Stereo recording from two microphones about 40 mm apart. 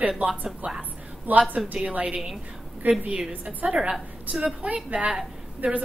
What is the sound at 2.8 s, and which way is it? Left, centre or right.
Speech, right.